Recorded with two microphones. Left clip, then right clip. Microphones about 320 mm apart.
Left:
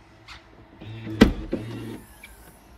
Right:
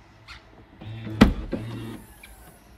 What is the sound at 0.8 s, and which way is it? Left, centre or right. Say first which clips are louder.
Music: left 1 dB; right.